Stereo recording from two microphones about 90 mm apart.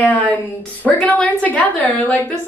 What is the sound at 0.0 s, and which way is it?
A woman's voice, 20° left (ahead or behind).